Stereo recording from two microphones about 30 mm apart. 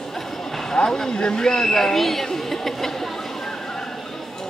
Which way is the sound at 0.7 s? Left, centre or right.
Centre.